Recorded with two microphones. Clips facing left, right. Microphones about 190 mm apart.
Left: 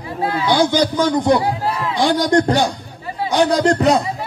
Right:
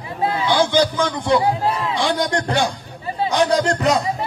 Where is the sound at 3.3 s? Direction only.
35° left (ahead or behind).